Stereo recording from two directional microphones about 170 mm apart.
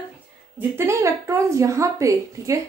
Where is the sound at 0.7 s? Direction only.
15° right (ahead or behind).